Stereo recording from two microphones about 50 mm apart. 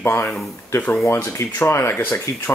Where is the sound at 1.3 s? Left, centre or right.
Left.